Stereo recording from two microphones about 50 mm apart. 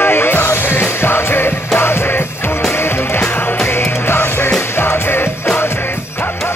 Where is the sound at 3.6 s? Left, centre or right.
Left.